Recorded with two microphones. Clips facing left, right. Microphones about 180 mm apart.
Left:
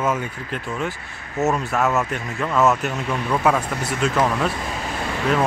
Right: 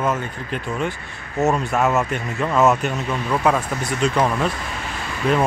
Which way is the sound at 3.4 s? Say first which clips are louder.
Right 1 dB; 5° left (ahead or behind).